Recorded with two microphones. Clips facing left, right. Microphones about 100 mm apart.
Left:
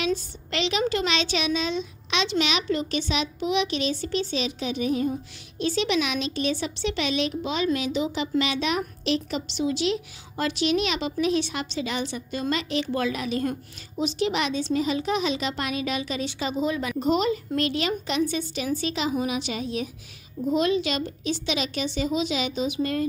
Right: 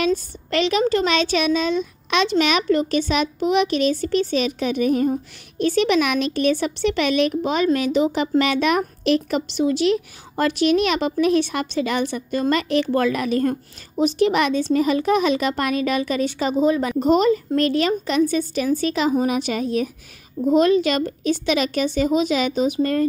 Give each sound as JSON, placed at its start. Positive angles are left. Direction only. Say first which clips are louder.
{"t": 0.0, "sound": "a woman's voice", "louder": "right 6 dB", "side_deg": -45}